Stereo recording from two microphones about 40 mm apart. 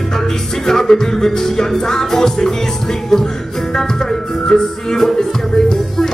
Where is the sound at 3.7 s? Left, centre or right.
Centre.